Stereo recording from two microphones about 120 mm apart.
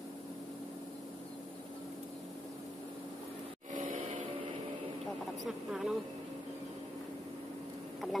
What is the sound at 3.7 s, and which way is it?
Music, 90° right.